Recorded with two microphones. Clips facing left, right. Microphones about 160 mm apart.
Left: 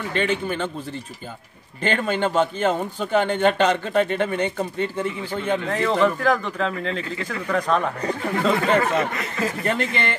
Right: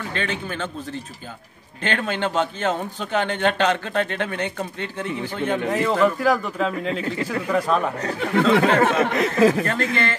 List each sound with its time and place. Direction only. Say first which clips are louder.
0.1 s speech: left 6 dB; 15° left (ahead or behind)
1.8 s speech: left 2 dB; 10° left (ahead or behind)
5.7 s speech: right 1 dB; 10° right (ahead or behind)
8.5 s speech: right 3 dB; 80° right
9.7 s speech: even; 15° left (ahead or behind)